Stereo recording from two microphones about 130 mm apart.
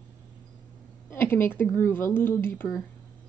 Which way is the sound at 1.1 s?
15° left (ahead or behind).